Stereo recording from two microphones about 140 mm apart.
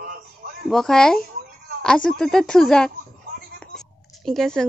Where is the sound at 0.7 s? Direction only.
5° left (ahead or behind).